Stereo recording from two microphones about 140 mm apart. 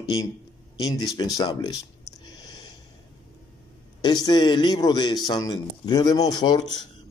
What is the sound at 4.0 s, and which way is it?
Speech, 30° left (ahead or behind).